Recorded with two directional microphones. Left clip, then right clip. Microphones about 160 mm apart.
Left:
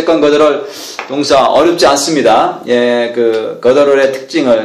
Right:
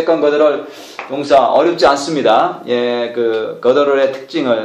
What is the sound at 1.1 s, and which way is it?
Speech, 50° left (ahead or behind).